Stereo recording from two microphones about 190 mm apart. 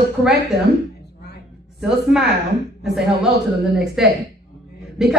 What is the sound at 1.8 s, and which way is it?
A woman's voice, 5° right (ahead or behind).